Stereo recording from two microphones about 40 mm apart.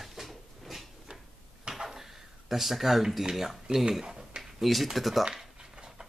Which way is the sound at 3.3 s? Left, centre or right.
Centre.